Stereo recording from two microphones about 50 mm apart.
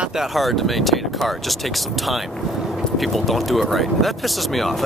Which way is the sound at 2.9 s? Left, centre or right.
Centre.